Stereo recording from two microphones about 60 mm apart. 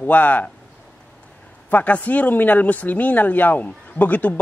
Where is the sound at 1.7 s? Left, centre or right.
Left.